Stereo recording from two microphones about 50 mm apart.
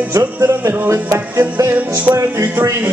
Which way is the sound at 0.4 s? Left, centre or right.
Right.